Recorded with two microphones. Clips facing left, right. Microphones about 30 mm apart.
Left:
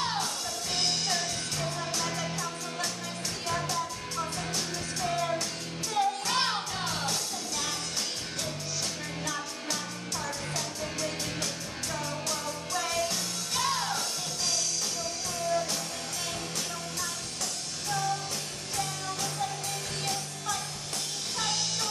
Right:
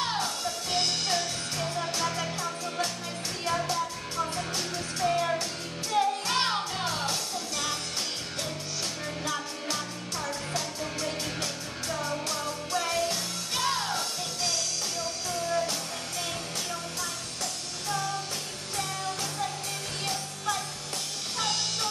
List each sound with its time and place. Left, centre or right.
0.0 s music: centre
9.2 s music: centre
21.4 s music: centre